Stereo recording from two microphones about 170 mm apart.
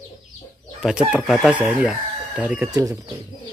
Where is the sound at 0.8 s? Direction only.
5° right (ahead or behind).